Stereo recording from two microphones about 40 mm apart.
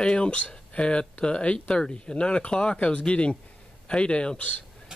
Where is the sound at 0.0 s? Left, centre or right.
Left.